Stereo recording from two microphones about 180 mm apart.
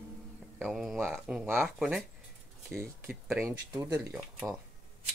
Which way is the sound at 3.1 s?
5° right (ahead or behind).